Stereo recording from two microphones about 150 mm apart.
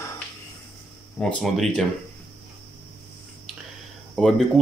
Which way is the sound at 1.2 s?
5° left (ahead or behind).